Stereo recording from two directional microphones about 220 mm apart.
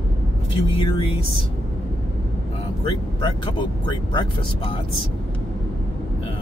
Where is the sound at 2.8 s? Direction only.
20° left (ahead or behind).